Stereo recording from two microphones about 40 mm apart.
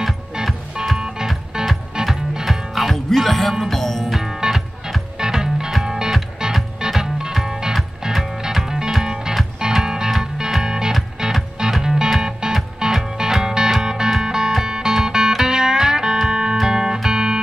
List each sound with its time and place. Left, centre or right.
2.4 s music: centre
4.4 s music: centre